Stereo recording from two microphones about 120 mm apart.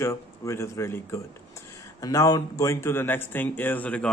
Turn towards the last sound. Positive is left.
turn(degrees=10)  # may be behind; listen again after turning